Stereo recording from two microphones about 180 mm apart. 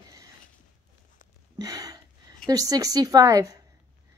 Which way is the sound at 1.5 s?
20° right (ahead or behind).